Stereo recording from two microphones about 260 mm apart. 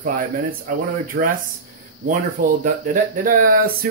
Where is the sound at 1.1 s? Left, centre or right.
Right.